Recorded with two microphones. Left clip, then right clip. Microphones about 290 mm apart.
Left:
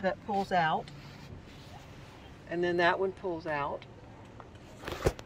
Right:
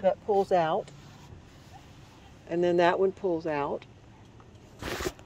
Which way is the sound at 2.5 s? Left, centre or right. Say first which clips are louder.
Right 4 dB; right.